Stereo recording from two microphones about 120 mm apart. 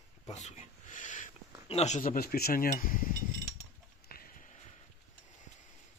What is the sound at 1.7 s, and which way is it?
Speech, 70° left (ahead or behind).